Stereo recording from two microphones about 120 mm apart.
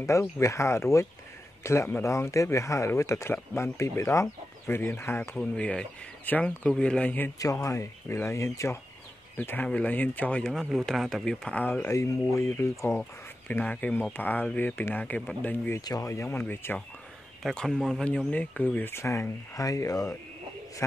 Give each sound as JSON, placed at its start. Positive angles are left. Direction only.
{"t": 0.0, "sound": "speech", "side_deg": 25}
{"t": 5.4, "sound": "a man's voice", "side_deg": 10}
{"t": 7.3, "sound": "speech", "side_deg": 25}
{"t": 9.4, "sound": "a man's voice", "side_deg": 15}
{"t": 10.4, "sound": "a man's voice", "side_deg": 0}
{"t": 15.8, "sound": "speech", "side_deg": 30}
{"t": 17.4, "sound": "a man's voice", "side_deg": 0}